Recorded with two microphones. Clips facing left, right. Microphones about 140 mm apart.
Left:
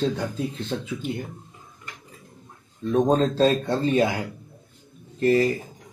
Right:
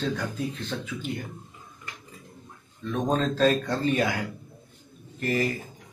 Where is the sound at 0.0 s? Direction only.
25° left (ahead or behind).